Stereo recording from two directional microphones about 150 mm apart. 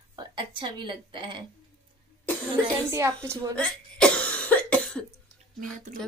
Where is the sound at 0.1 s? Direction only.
30° right (ahead or behind).